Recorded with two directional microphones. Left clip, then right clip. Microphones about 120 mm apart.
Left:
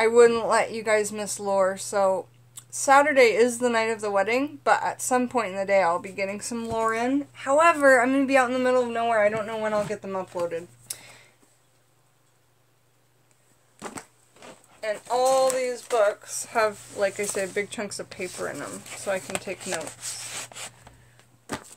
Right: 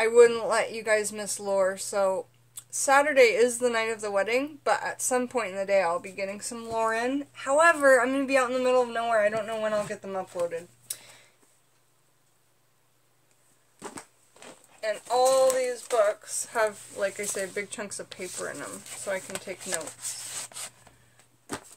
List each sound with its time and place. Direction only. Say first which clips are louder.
0.0 s speech: left 2 dB; 15° left (ahead or behind)
15.0 s speech: even; 20° left (ahead or behind)
19.6 s speech: left 3 dB; 5° left (ahead or behind)